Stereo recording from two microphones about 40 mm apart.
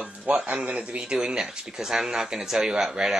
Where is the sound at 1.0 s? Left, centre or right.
Centre.